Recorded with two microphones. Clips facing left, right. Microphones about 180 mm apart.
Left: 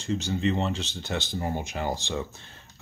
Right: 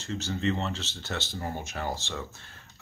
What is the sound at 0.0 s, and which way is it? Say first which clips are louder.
Speech: left 3 dB; 15° left (ahead or behind).